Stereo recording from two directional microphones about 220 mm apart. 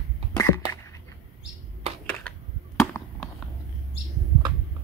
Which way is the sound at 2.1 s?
5° left (ahead or behind).